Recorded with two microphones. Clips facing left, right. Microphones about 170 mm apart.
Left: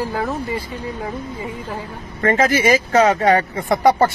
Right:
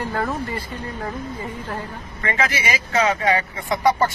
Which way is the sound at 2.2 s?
45° left (ahead or behind).